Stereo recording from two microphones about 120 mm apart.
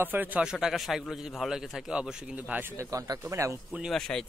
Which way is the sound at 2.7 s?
25° right (ahead or behind).